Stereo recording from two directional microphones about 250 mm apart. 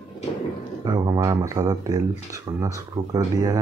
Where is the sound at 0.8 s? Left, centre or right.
Centre.